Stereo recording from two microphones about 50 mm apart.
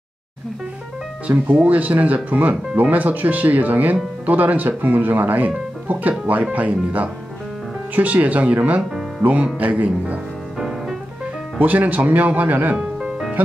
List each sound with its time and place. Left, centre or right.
1.5 s speech: right
11.6 s speech: right
12.7 s music: centre